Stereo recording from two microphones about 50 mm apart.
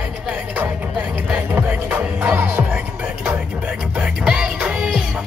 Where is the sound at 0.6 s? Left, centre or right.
Right.